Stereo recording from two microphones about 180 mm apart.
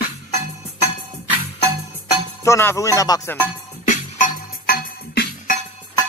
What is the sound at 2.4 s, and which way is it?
Speech, 15° left (ahead or behind).